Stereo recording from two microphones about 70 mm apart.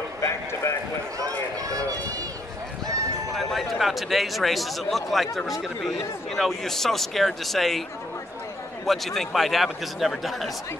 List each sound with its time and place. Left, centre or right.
0.2 s speech: left
1.7 s speech: right
3.3 s a man's voice: centre
8.8 s a man's voice: centre